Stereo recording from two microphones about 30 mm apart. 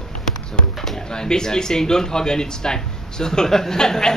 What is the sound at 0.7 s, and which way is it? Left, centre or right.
Speech, centre.